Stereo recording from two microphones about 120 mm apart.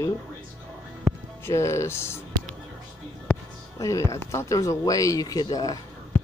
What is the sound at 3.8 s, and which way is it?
Speech, 25° left (ahead or behind).